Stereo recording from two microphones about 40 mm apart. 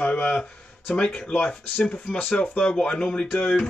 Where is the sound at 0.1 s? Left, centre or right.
Left.